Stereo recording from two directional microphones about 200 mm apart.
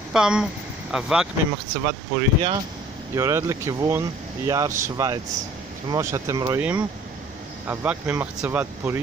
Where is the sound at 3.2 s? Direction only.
15° right (ahead or behind).